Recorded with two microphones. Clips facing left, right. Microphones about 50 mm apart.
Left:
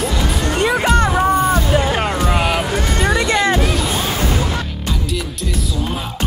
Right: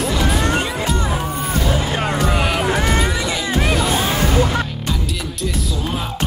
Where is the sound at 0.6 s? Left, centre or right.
Left.